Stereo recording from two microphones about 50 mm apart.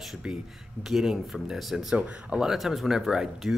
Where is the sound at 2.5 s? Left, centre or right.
Centre.